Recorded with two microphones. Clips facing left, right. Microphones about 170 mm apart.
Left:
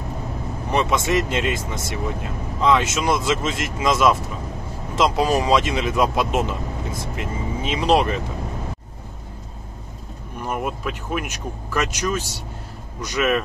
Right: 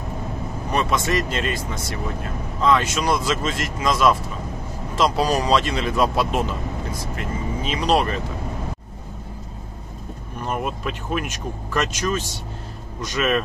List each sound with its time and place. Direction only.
0.7 s speech: 20° left (ahead or behind)
10.4 s speech: 10° left (ahead or behind)